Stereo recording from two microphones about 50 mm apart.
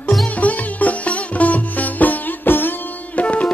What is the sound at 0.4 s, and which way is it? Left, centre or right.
Music, left.